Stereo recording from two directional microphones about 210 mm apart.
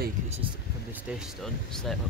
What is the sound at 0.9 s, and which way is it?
Speech, 5° right (ahead or behind).